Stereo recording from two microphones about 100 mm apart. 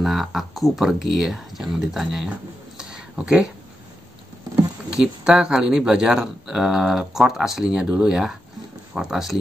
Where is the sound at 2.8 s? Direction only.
5° right (ahead or behind).